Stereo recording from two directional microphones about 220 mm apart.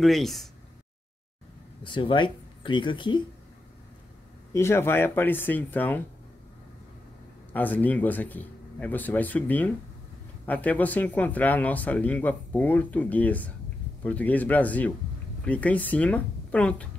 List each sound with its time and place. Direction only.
0.0 s speech: centre (ahead or behind)
1.8 s speech: 20° left (ahead or behind)
4.5 s speech: 10° left (ahead or behind)
7.5 s speech: 10° left (ahead or behind)